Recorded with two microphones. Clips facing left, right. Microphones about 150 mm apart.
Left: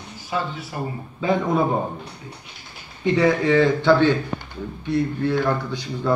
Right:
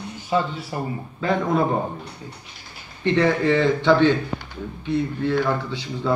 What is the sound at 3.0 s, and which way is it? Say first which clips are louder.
A man's voice: left 1 dB; 5° left (ahead or behind).